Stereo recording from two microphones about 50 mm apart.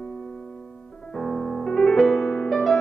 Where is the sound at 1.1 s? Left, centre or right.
Centre.